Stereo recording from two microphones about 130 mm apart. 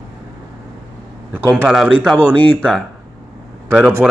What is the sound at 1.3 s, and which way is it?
Speech, 15° right (ahead or behind).